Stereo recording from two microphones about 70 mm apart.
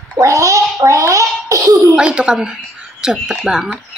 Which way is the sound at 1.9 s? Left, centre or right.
Centre.